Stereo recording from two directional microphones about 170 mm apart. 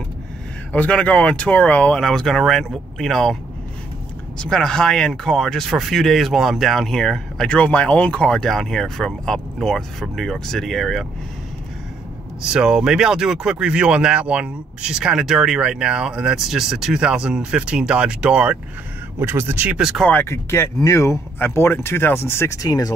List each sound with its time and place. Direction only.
0.7 s speech: 5° left (ahead or behind)
4.4 s speech: 5° left (ahead or behind)
12.5 s speech: 5° right (ahead or behind)
20.1 s speech: 15° left (ahead or behind)